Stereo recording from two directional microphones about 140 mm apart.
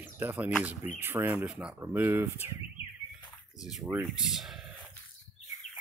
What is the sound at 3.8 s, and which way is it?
Speech, 15° right (ahead or behind).